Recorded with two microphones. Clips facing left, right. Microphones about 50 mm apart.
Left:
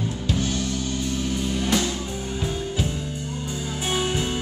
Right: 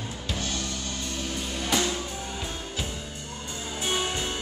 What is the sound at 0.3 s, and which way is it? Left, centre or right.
Music, centre.